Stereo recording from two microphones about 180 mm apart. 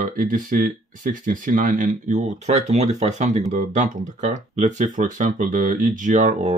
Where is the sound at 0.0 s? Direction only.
50° right (ahead or behind).